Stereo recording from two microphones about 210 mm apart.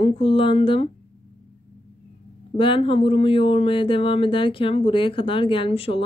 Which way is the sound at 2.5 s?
25° left (ahead or behind).